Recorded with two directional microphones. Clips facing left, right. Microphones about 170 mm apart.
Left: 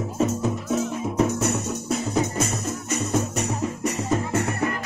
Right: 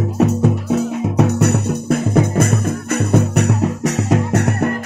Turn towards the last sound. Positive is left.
turn(degrees=-75)  # may be behind; listen again after turning